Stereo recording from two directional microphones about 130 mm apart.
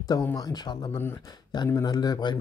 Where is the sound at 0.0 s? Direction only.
25° left (ahead or behind).